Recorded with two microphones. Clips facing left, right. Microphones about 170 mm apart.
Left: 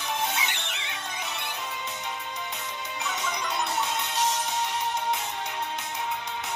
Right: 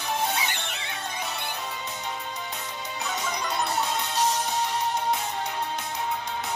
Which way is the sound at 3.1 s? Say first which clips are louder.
Right 1 dB; 35° right (ahead or behind).